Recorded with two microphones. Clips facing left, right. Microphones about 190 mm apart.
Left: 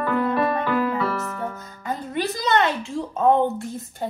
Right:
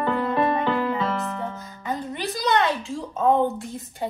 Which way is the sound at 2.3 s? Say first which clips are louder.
Right 1 dB; centre (ahead or behind).